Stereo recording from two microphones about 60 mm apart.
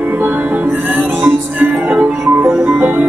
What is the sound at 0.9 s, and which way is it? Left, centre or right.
Music, right.